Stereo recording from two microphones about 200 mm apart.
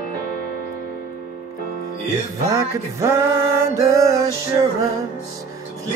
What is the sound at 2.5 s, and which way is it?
Music, 15° right (ahead or behind).